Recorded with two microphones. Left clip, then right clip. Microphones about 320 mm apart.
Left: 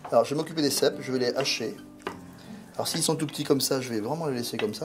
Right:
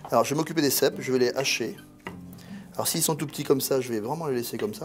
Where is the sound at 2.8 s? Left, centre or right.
Right.